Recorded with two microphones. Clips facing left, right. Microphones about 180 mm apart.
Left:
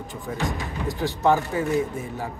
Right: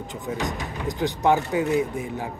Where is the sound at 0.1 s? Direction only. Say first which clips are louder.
Even; 20° right (ahead or behind).